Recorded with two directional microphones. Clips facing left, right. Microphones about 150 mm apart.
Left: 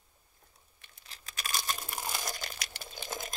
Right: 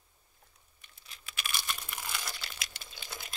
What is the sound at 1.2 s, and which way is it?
Crumpling, 35° left (ahead or behind).